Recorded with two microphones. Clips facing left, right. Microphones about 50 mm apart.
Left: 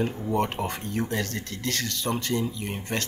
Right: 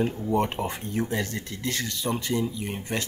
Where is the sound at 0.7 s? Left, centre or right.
Centre.